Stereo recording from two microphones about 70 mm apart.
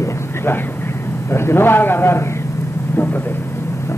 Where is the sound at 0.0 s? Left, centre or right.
Left.